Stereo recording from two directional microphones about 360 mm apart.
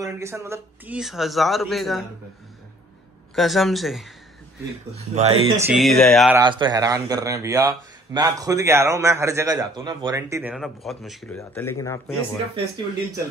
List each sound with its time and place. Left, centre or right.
0.0 s a man's voice: centre
3.3 s a man's voice: centre
5.1 s speech: centre
5.6 s speech: centre